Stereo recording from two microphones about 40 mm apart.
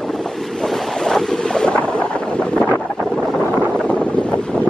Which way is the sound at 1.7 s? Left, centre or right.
Left.